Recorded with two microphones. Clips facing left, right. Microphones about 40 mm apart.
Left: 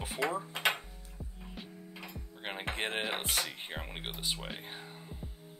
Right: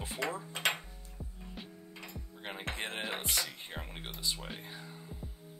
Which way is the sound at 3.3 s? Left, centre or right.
Centre.